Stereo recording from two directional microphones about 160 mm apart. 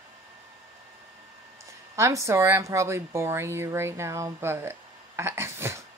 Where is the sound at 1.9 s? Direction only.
20° right (ahead or behind).